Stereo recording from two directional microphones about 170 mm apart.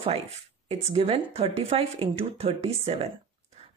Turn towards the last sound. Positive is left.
turn(degrees=-35)  # may be behind; listen again after turning